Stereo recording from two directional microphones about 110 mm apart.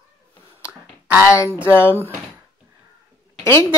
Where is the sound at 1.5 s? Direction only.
15° right (ahead or behind).